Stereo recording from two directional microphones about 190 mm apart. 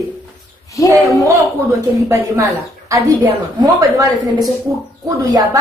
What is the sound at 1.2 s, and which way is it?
A woman's voice, 15° right (ahead or behind).